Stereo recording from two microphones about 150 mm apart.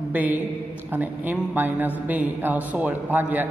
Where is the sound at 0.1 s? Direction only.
10° right (ahead or behind).